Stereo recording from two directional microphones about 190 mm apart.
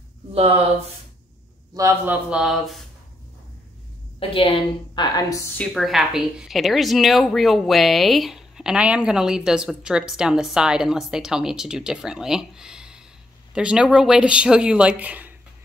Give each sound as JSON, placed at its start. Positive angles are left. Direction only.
{"t": 0.3, "sound": "speech", "side_deg": -30}
{"t": 1.7, "sound": "a woman's voice", "side_deg": -15}
{"t": 4.2, "sound": "a woman's voice", "side_deg": 30}
{"t": 5.6, "sound": "a woman's voice", "side_deg": 0}